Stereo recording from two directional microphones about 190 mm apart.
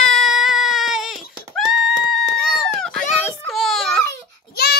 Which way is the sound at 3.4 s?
Centre (ahead or behind).